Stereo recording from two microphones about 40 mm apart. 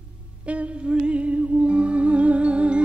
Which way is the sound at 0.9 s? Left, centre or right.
Right.